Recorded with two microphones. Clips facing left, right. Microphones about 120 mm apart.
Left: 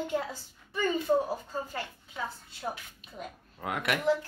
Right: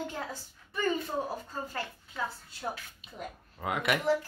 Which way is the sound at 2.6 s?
Centre (ahead or behind).